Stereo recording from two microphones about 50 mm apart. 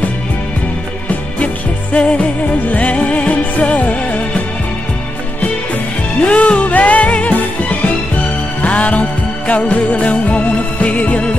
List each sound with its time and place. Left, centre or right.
1.4 s music: left
6.2 s music: left